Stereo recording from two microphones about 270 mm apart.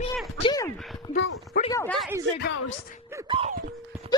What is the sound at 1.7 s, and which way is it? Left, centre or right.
Speech, centre.